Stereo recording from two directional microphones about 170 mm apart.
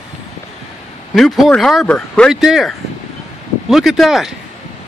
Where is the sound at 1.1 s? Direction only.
Centre (ahead or behind).